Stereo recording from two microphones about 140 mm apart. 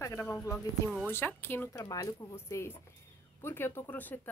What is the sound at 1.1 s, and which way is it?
A woman's voice, 15° left (ahead or behind).